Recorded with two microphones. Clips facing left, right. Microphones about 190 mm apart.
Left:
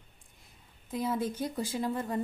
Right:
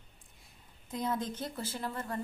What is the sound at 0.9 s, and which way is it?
Speech, 5° left (ahead or behind).